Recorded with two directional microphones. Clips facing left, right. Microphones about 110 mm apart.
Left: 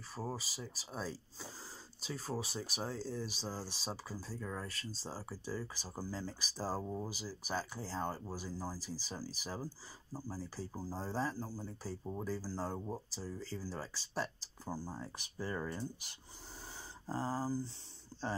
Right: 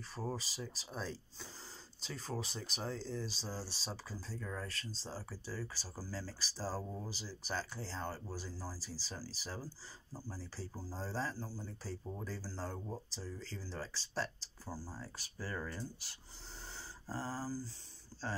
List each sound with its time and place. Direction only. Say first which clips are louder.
0.1 s speech: even; 10° left (ahead or behind)